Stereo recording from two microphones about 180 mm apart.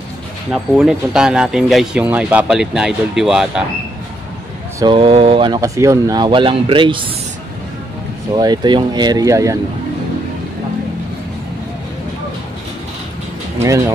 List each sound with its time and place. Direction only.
0.5 s speech: 5° right (ahead or behind)
4.7 s speech: 25° right (ahead or behind)
8.3 s speech: 20° right (ahead or behind)
13.6 s speech: 15° right (ahead or behind)